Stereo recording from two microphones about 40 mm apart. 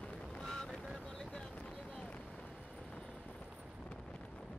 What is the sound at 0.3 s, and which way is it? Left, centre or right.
Boat, centre.